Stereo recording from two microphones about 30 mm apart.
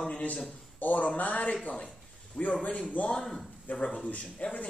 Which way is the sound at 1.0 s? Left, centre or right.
Left.